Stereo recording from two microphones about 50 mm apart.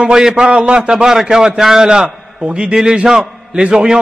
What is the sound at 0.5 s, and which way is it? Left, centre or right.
A man's voice, right.